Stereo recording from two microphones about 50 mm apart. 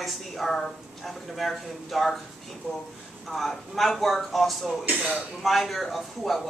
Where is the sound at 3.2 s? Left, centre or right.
Centre.